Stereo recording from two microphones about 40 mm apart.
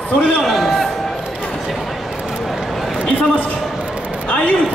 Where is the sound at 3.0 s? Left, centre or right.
Left.